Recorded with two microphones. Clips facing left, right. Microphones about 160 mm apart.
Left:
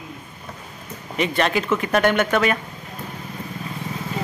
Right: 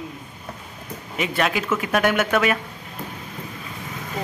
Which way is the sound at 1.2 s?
5° right (ahead or behind).